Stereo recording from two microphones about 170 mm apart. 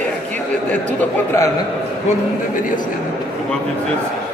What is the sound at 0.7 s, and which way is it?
Speech, 10° left (ahead or behind).